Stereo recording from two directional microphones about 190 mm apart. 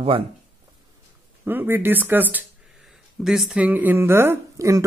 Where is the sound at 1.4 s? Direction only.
10° right (ahead or behind).